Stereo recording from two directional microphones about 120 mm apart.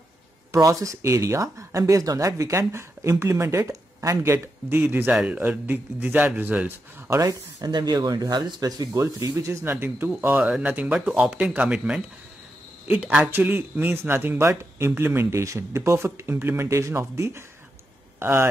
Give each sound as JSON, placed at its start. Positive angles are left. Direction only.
{"t": 0.5, "sound": "a man's voice", "side_deg": -30}
{"t": 7.1, "sound": "a man's voice", "side_deg": -30}